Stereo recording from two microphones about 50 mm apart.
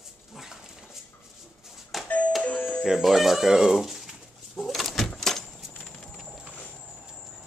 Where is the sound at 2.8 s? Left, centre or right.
Centre.